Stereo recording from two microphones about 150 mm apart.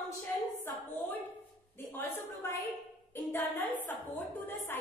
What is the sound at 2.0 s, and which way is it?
A woman's voice, 15° left (ahead or behind).